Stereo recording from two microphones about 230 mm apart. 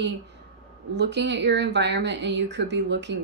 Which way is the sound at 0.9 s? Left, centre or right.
Right.